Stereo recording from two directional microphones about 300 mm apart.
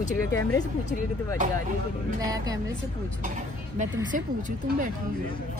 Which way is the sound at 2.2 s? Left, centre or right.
Centre.